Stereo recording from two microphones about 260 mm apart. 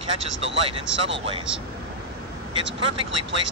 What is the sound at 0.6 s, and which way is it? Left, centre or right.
Speech, right.